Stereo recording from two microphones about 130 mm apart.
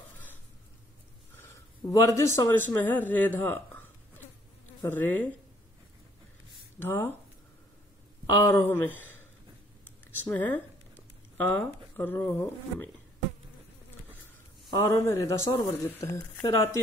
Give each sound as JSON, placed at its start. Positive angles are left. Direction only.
{"t": 1.9, "sound": "speech", "side_deg": 20}
{"t": 6.9, "sound": "a man's voice", "side_deg": 20}
{"t": 8.3, "sound": "speech", "side_deg": 20}
{"t": 14.7, "sound": "a man's voice", "side_deg": 20}